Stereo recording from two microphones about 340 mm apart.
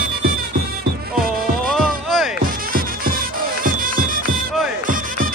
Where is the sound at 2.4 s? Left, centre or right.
Right.